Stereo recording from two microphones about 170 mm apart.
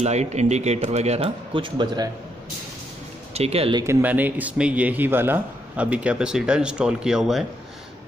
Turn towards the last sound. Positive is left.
turn(degrees=0)  # may be behind; listen again after turning